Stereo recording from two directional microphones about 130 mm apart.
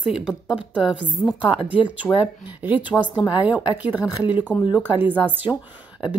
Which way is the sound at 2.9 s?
10° left (ahead or behind).